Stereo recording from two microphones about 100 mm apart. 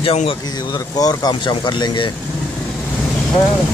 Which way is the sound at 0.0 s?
90° left.